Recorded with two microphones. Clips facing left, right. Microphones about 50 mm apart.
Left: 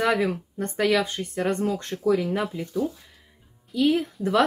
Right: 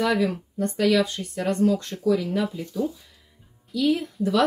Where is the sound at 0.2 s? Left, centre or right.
Left.